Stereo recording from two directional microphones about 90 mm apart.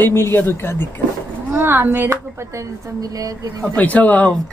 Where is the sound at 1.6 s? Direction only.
25° right (ahead or behind).